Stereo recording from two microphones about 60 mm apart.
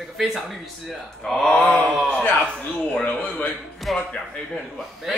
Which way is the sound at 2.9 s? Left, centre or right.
Centre.